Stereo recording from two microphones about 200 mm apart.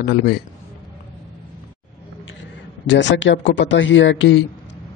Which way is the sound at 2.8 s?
65° left (ahead or behind).